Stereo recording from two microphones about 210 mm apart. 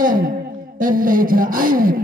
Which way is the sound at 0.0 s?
40° right (ahead or behind).